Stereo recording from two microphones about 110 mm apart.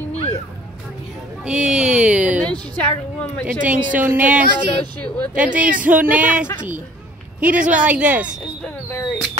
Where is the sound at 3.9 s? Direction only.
15° right (ahead or behind).